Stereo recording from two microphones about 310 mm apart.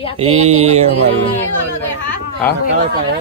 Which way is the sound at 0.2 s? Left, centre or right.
Centre.